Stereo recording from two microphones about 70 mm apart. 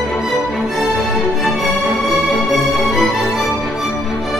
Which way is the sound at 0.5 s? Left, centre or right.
Centre.